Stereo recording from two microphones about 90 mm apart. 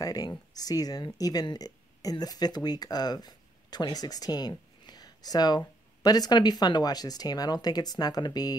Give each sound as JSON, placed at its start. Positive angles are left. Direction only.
{"t": 0.0, "sound": "speech", "side_deg": 45}